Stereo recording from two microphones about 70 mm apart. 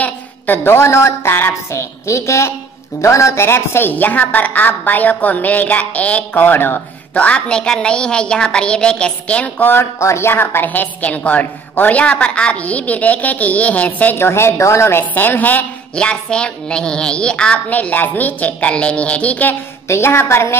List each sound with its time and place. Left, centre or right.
0.0 s a woman's voice: left
9.7 s a woman's voice: left
14.1 s a woman's voice: left
15.9 s a woman's voice: centre
19.9 s a woman's voice: left